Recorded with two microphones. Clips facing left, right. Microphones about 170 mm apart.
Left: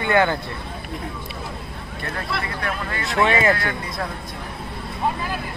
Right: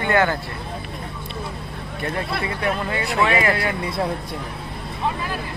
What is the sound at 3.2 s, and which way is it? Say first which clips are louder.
Speech: left 2 dB; 25° left (ahead or behind).